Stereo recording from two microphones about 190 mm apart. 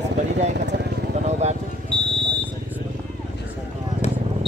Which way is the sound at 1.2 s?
35° right (ahead or behind).